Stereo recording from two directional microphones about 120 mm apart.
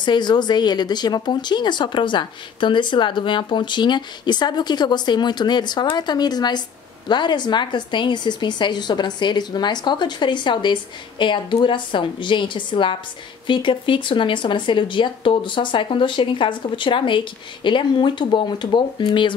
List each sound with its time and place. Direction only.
0.0 s speech: 40° left (ahead or behind)